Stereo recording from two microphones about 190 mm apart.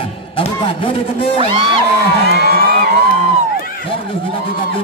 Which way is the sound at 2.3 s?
60° right (ahead or behind).